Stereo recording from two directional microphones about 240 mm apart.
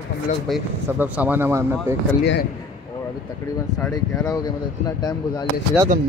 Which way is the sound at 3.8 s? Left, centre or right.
Centre.